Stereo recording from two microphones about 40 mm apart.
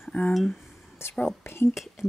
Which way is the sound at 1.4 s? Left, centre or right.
Left.